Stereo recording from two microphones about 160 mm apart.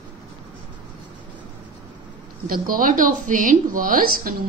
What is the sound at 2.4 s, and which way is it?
A woman's voice, 65° right (ahead or behind).